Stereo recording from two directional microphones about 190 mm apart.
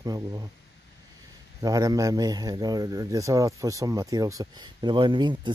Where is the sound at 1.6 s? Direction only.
20° right (ahead or behind).